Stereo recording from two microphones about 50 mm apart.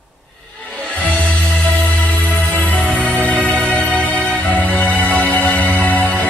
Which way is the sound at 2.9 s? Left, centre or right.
Left.